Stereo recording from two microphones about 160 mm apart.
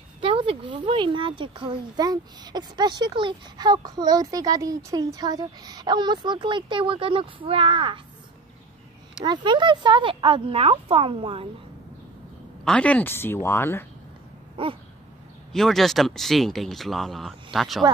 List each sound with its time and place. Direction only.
0.2 s speech: 35° right (ahead or behind)
9.2 s speech: 30° right (ahead or behind)
12.6 s speech: 5° left (ahead or behind)
14.6 s speech: 35° right (ahead or behind)
15.5 s speech: centre (ahead or behind)